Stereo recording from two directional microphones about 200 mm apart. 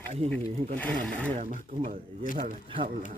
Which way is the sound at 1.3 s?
30° right (ahead or behind).